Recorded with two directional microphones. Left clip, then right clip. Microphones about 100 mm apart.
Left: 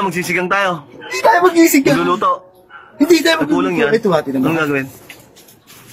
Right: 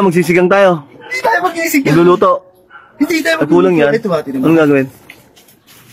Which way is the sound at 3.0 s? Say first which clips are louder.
Left 2 dB; 20° left (ahead or behind).